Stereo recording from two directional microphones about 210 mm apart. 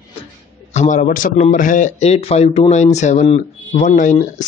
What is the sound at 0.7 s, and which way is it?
A man's voice, 35° left (ahead or behind).